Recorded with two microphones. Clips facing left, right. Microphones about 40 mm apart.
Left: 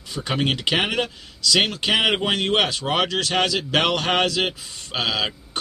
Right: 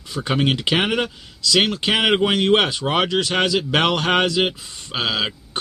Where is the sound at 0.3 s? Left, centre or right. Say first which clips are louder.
Right 2 dB; centre.